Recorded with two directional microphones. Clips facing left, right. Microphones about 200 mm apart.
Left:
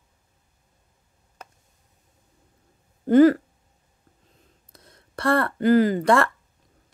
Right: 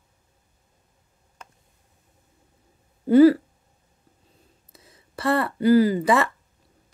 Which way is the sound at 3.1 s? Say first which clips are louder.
Right 1 dB; 10° right (ahead or behind).